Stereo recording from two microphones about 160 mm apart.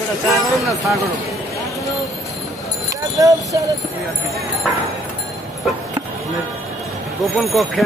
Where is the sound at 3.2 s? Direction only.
20° right (ahead or behind).